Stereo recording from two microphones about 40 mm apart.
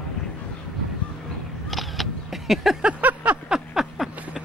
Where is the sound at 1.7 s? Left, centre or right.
Centre.